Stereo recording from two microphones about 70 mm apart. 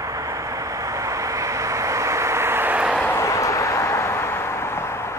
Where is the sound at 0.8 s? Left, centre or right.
Right.